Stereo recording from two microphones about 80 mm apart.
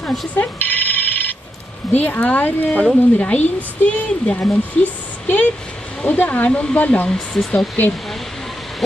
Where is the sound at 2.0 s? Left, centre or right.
Left.